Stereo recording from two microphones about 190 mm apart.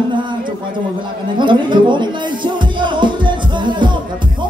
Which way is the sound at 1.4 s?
25° right (ahead or behind).